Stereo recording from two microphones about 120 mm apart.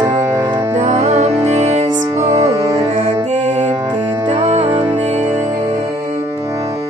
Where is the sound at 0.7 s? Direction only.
75° right (ahead or behind).